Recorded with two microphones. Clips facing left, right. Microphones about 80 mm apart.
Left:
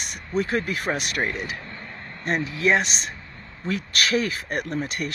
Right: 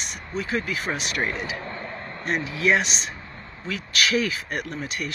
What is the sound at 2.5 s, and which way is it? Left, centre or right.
Speech, left.